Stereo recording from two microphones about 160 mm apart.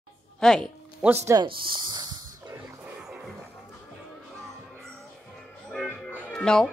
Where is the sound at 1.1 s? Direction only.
20° right (ahead or behind).